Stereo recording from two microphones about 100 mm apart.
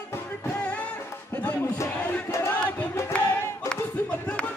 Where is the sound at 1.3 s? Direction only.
15° left (ahead or behind).